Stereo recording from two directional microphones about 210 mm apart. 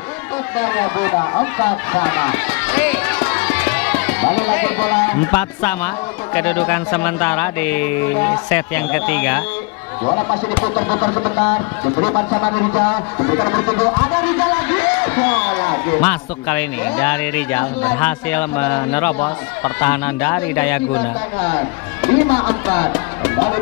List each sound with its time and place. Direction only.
0.6 s speech: 10° left (ahead or behind)
10.0 s speech: 20° left (ahead or behind)